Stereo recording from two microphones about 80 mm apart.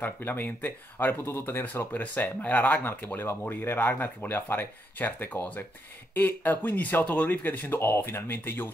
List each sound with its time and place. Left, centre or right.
0.0 s speech: left